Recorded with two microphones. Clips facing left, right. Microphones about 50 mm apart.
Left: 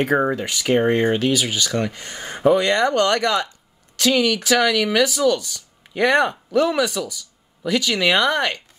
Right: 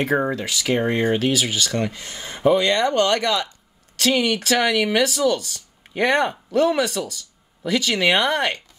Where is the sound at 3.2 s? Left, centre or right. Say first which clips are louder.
Left 2 dB; left.